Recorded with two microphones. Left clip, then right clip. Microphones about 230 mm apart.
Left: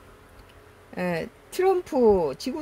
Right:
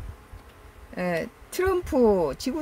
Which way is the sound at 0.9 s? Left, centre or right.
Centre.